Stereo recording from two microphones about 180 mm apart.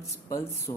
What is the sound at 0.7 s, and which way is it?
Speech, 20° left (ahead or behind).